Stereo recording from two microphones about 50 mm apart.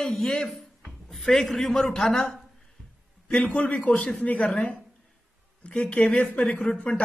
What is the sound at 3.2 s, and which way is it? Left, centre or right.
Speech, left.